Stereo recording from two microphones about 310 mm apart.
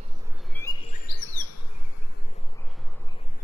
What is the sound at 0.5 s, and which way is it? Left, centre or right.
Bird vocalization, centre.